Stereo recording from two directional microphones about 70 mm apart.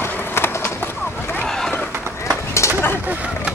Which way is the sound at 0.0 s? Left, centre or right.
Left.